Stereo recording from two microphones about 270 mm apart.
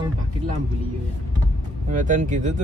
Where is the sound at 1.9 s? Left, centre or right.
Right.